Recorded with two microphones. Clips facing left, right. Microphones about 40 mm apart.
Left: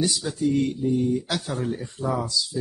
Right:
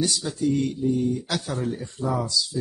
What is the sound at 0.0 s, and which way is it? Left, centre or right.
A man's voice, centre.